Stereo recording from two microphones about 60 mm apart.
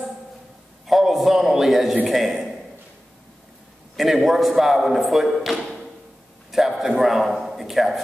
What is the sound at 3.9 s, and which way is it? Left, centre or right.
Speech, centre.